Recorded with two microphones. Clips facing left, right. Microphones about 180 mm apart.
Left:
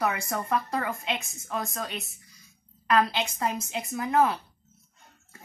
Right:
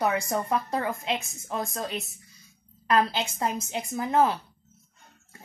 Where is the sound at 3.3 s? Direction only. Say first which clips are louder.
Right 1 dB; 25° right (ahead or behind).